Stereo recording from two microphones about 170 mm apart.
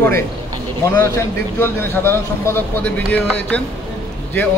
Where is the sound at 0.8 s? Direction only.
20° left (ahead or behind).